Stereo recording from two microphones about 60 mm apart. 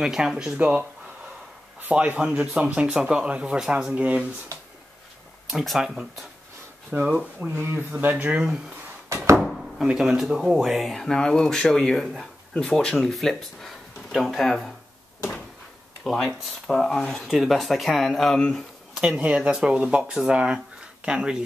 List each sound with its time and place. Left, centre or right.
0.0 s speech: centre
1.8 s speech: right
5.5 s speech: centre
6.9 s speech: right
7.5 s speech: right
8.1 s speech: right
9.1 s a sound: right
9.4 s speech: centre
16.0 s speech: centre
16.9 s speech: centre
17.3 s speech: centre
18.9 s speech: centre
19.2 s speech: centre